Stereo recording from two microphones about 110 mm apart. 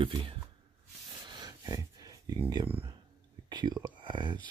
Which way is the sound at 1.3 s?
35° right (ahead or behind).